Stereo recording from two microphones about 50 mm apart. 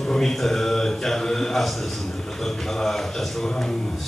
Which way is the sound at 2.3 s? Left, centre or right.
Centre.